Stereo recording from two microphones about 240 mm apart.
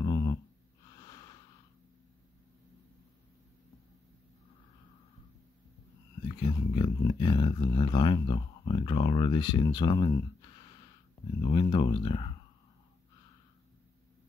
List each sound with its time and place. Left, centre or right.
0.0 s a sound: centre
6.2 s speech: left
11.4 s speech: centre